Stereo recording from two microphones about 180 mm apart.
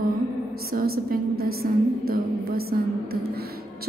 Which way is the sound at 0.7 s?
55° right (ahead or behind).